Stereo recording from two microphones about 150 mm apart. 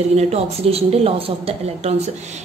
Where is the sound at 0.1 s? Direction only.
45° right (ahead or behind).